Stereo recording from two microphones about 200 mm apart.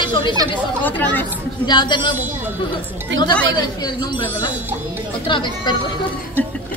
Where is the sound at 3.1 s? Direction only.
65° right (ahead or behind).